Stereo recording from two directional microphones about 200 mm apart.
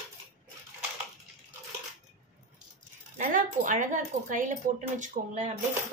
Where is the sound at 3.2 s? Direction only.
40° right (ahead or behind).